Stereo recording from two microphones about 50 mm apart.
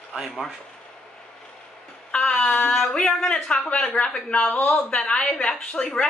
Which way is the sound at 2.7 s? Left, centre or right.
Centre.